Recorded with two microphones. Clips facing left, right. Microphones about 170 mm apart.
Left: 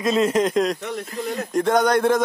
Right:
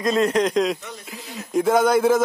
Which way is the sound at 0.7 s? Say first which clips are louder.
Left 9 dB; 70° left (ahead or behind).